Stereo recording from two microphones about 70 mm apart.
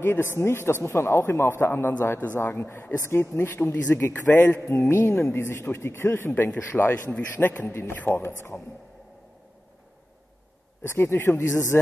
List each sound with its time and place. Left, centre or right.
0.0 s a man's voice: left
10.8 s a man's voice: left